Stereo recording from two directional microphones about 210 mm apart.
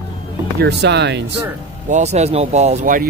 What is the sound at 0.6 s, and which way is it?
Speech, 55° right (ahead or behind).